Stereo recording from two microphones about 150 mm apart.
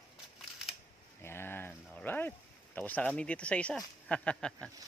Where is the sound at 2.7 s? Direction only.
10° left (ahead or behind).